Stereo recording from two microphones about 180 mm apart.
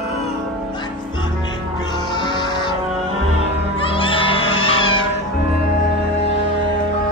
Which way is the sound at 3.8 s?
30° left (ahead or behind).